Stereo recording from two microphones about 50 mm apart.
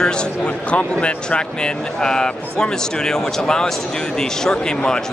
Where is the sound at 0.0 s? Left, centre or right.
Centre.